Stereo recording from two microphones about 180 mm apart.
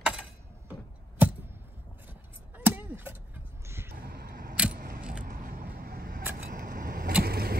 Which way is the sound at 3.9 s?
60° right (ahead or behind).